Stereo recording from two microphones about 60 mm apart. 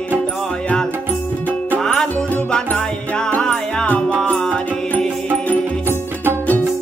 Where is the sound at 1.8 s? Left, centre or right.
Centre; by 6.0 s left.